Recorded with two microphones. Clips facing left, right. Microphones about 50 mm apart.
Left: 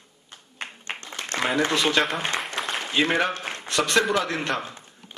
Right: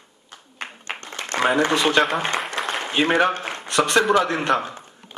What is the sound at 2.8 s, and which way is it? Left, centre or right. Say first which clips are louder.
A man's voice: right 4 dB; right.